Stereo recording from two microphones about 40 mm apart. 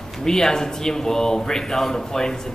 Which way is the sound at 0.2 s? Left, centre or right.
Centre.